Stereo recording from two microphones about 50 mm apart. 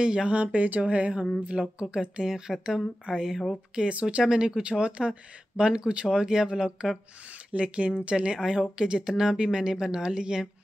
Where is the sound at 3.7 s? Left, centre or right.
Right.